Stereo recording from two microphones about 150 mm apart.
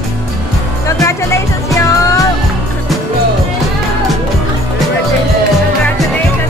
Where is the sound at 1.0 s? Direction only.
20° left (ahead or behind).